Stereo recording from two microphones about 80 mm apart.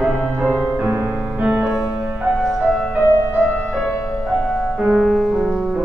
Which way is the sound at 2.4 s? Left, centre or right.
Centre.